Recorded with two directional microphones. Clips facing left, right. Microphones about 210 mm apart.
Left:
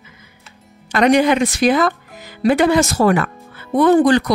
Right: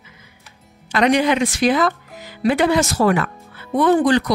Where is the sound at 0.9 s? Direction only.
45° left (ahead or behind).